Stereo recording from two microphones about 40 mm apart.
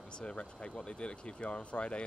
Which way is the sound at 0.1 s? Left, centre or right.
Left.